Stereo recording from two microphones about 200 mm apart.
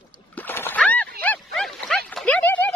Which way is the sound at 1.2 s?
5° left (ahead or behind).